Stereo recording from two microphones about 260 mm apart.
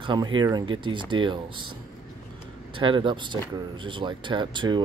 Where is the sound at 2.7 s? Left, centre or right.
Centre.